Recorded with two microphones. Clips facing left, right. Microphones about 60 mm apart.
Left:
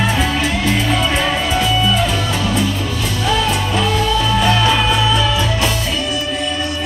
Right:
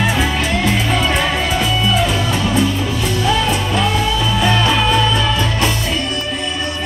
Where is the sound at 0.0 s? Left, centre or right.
Centre.